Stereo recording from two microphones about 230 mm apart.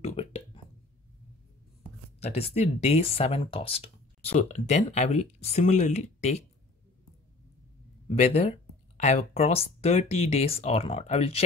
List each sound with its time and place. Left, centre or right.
0.0 s a sound: left
2.1 s speech: left
8.1 s speech: left